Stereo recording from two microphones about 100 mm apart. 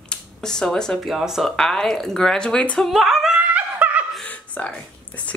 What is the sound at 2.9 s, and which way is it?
Laughter, centre (ahead or behind).